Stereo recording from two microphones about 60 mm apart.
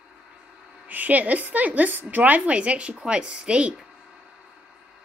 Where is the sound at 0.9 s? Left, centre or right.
Right.